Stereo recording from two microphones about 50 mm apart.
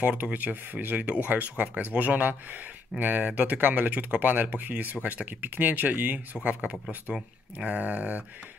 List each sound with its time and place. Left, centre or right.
0.2 s speech: right